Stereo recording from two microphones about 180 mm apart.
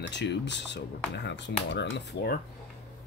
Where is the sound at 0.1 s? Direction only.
75° left (ahead or behind).